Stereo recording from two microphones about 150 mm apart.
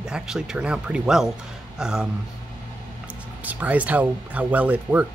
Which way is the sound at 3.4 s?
10° right (ahead or behind).